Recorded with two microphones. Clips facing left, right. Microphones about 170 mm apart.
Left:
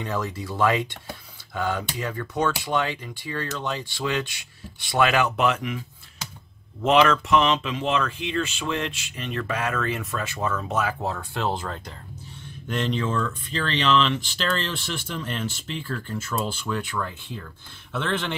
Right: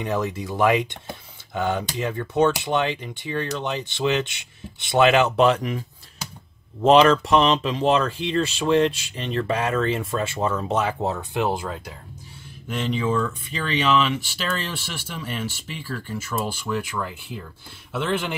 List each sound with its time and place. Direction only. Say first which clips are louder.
0.0 s speech: right 4 dB; 20° right (ahead or behind)